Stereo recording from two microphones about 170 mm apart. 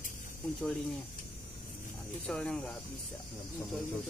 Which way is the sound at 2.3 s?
5° left (ahead or behind).